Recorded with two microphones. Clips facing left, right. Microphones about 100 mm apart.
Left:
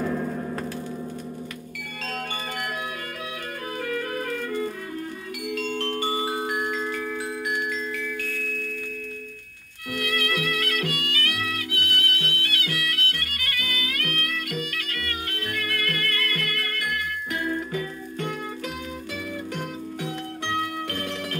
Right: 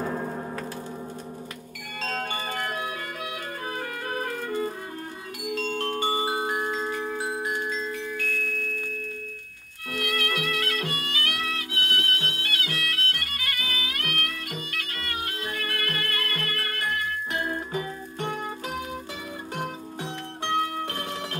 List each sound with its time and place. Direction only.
0.0 s a sound: 35° right (ahead or behind)
2.0 s bell: 30° right (ahead or behind)
3.8 s music: 30° right (ahead or behind)
5.9 s music: 20° right (ahead or behind)
9.9 s music: 25° right (ahead or behind)
20.5 s music: 20° right (ahead or behind)